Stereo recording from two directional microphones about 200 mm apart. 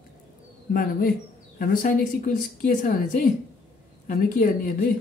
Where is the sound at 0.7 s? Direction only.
45° left (ahead or behind).